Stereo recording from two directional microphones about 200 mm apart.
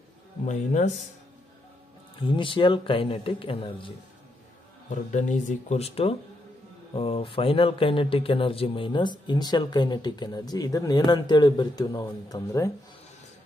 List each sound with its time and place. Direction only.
0.5 s speech: 35° left (ahead or behind)
2.1 s speech: 25° left (ahead or behind)
5.1 s speech: 40° left (ahead or behind); by 12.7 s 15° left (ahead or behind)